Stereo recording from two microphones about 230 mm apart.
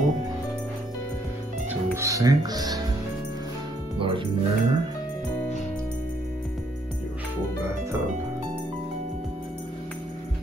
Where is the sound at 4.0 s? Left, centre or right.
Right.